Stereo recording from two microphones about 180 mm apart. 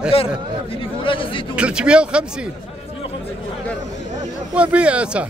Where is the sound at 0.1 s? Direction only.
30° left (ahead or behind).